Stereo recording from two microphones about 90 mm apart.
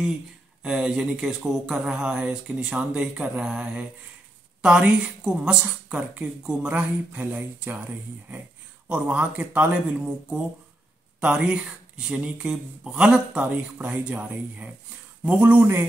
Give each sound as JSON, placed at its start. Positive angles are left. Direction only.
{"t": 0.6, "sound": "speech", "side_deg": -5}
{"t": 8.8, "sound": "a man's voice", "side_deg": -15}